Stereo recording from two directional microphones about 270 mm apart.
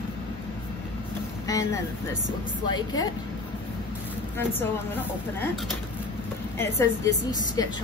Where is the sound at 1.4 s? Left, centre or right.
Centre.